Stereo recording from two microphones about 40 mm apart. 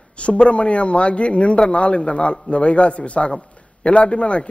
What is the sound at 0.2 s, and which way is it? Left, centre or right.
A man's voice, left.